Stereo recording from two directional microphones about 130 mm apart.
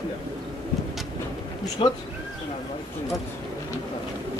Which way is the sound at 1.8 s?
40° left (ahead or behind).